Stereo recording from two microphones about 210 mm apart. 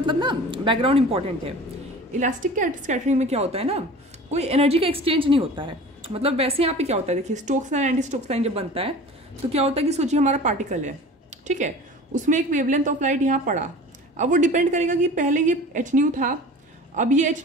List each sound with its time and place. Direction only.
0.0 s a woman's voice: 20° right (ahead or behind)